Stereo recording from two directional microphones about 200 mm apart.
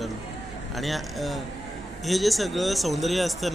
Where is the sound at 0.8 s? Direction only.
Centre (ahead or behind).